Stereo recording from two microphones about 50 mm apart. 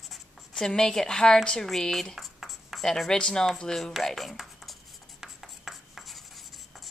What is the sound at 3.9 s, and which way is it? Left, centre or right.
Writing, centre.